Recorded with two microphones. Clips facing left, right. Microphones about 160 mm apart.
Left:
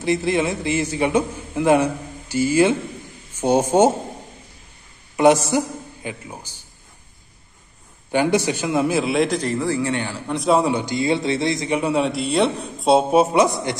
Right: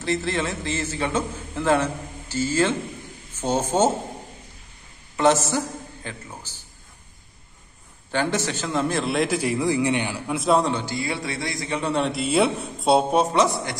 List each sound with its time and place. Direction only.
0.0 s a man's voice: 15° left (ahead or behind)
5.1 s a man's voice: 15° left (ahead or behind)
8.1 s a man's voice: 15° left (ahead or behind)
10.7 s a man's voice: 15° left (ahead or behind)
11.9 s a man's voice: centre (ahead or behind)